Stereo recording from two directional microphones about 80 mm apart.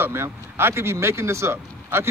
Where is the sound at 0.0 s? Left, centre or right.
Right.